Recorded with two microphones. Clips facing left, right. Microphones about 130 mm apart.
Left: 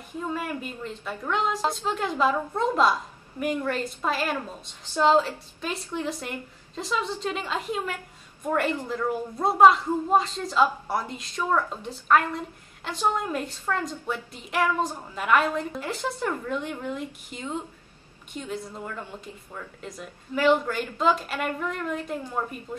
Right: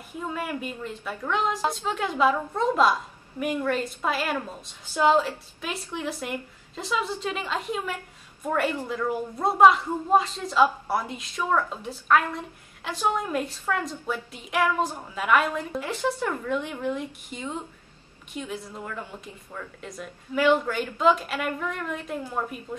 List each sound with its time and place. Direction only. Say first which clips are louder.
0.3 s a woman's voice: right 1 dB; 5° right (ahead or behind)